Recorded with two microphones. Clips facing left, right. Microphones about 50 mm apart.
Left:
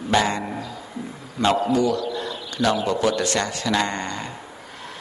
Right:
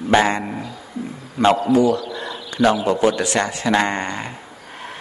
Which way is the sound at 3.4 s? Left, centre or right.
Right.